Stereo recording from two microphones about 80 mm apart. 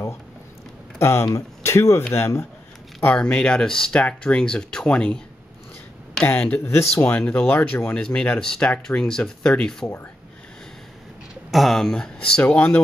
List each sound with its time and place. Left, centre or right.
0.9 s speech: left
3.2 s speech: centre
6.2 s speech: left
7.5 s speech: left
7.9 s speech: centre
11.5 s speech: centre